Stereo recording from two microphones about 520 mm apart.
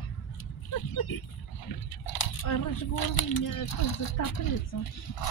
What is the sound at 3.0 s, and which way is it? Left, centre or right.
A child's voice, left.